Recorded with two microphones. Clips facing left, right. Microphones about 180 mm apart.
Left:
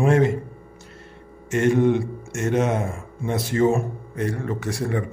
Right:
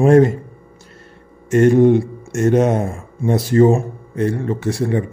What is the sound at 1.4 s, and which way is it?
Speech, 40° right (ahead or behind).